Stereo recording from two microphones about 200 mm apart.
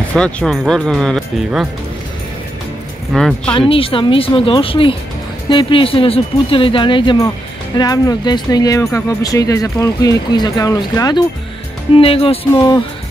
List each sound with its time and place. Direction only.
0.1 s speech: 5° left (ahead or behind)
3.1 s speech: centre (ahead or behind)
3.5 s speech: 25° left (ahead or behind)
12.0 s speech: 30° left (ahead or behind)